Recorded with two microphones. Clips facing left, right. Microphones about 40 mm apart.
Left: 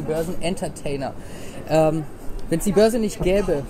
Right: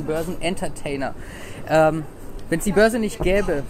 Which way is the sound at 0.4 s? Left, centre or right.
Right.